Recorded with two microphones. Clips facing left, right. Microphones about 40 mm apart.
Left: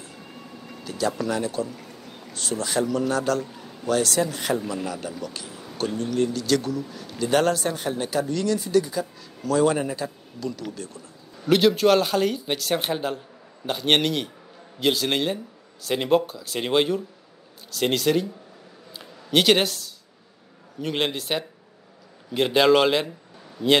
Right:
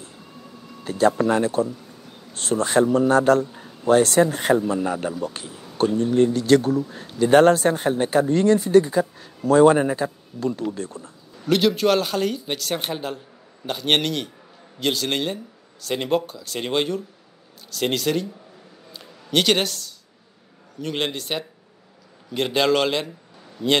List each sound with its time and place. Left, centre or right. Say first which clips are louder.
0.8 s speech: right 7 dB; right
11.4 s speech: left 1 dB; centre
18.9 s a sound: even; centre
20.8 s speech: even; centre